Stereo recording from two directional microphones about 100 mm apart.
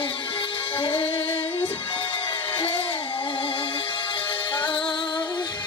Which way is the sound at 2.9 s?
60° left (ahead or behind).